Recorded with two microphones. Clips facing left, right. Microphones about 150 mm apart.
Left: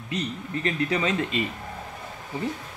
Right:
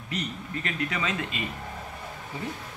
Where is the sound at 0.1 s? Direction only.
30° left (ahead or behind).